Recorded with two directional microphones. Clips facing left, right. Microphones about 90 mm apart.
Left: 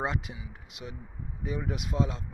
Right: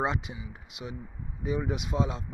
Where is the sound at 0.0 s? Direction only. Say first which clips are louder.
Right 2 dB; centre (ahead or behind).